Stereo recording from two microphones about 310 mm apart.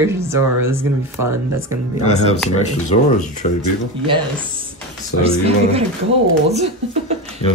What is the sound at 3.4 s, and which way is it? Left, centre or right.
Speech, left.